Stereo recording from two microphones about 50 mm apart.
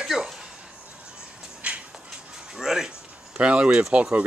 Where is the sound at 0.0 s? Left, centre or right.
Centre.